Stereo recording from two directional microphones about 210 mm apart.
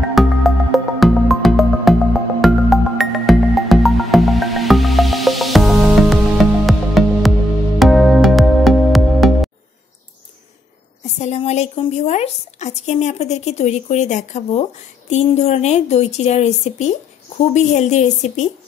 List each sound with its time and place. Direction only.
0.1 s music: centre (ahead or behind)
11.1 s a woman's voice: 30° left (ahead or behind)